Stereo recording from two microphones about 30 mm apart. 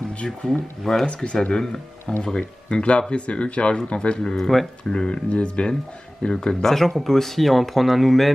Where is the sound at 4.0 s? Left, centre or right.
Left.